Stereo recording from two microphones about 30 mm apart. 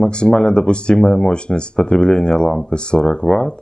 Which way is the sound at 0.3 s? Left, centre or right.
Centre.